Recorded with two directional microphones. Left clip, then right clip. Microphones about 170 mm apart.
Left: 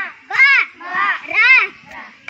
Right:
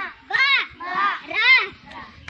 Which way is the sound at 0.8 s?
10° left (ahead or behind).